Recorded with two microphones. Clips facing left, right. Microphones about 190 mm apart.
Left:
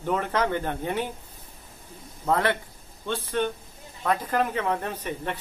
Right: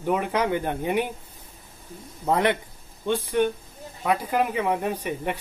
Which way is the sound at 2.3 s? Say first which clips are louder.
Right 2 dB; 20° right (ahead or behind).